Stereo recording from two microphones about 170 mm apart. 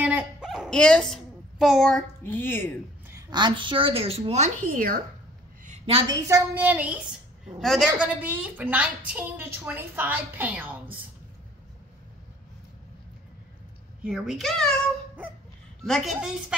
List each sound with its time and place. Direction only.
0.0 s dog: 5° right (ahead or behind); by 2.7 s 15° left (ahead or behind)
3.1 s a woman's voice: 20° right (ahead or behind); by 5.0 s 55° right (ahead or behind)
5.7 s a sound: 35° right (ahead or behind)
6.0 s a woman's voice: 20° right (ahead or behind)
14.0 s a woman's voice: 5° right (ahead or behind)
15.8 s a woman's voice: centre (ahead or behind)